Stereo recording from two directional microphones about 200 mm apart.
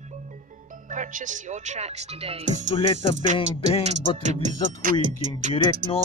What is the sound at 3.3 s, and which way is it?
Music, 25° left (ahead or behind).